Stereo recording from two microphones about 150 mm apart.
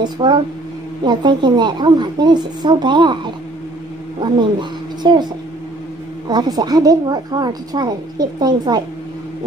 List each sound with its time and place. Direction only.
0.0 s a woman's voice: 30° right (ahead or behind)
6.2 s a woman's voice: 30° right (ahead or behind)